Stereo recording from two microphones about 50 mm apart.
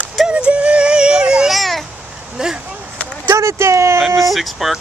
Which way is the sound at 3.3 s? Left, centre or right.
Right.